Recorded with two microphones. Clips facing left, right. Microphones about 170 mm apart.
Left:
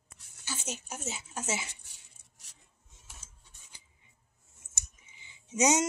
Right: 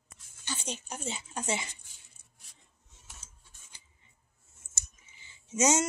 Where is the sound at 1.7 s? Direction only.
75° left (ahead or behind).